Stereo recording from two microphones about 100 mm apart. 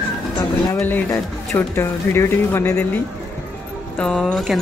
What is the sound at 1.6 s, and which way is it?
Speech, 25° left (ahead or behind).